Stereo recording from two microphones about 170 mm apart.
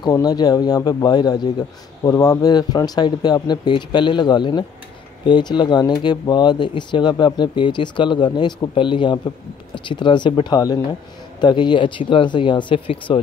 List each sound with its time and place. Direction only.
0.0 s speech: 20° left (ahead or behind)